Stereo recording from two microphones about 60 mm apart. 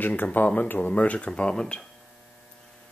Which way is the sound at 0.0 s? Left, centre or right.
Left.